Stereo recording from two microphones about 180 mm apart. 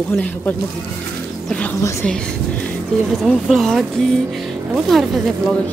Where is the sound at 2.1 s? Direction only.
5° left (ahead or behind).